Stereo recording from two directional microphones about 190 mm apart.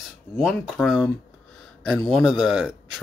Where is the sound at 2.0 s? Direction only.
Centre (ahead or behind).